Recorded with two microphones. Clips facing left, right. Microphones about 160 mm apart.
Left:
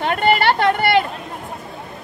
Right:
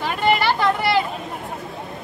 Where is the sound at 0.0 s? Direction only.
60° left (ahead or behind).